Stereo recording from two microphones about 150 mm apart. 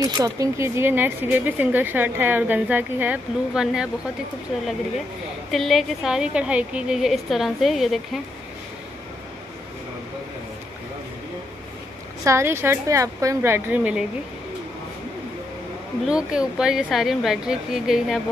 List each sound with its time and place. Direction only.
0.0 s speech: 20° right (ahead or behind); by 3.9 s 5° right (ahead or behind)
5.5 s a woman's voice: centre (ahead or behind)
12.3 s speech: 15° right (ahead or behind)
16.1 s a woman's voice: 5° right (ahead or behind)